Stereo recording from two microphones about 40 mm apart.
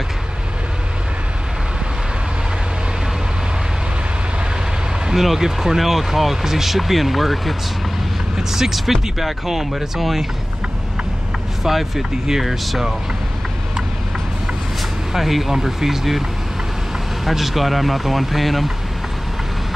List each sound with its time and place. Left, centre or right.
5.0 s speech: centre
11.6 s speech: centre
15.1 s speech: centre